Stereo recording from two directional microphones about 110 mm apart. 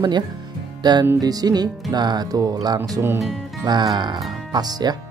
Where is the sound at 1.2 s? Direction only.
35° right (ahead or behind).